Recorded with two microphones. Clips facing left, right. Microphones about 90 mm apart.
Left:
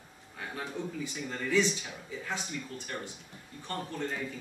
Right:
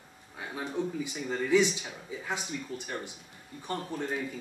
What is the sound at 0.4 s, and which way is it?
Speech, 15° right (ahead or behind).